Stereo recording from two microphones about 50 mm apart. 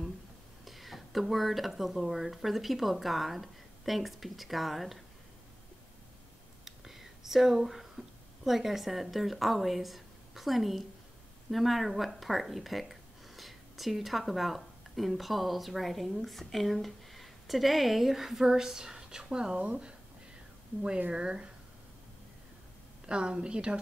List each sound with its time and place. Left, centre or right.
0.7 s speech: centre
6.6 s a sound: centre
8.5 s a woman's voice: centre; by 19.9 s right
21.1 s speech: centre
23.0 s a woman's voice: centre